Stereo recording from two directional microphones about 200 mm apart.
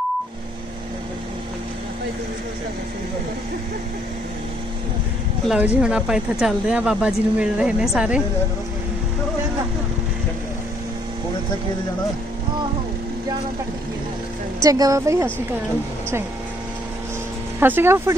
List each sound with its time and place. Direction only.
5.5 s speech: 5° right (ahead or behind)
14.6 s speech: 15° right (ahead or behind)
17.6 s speech: 10° right (ahead or behind)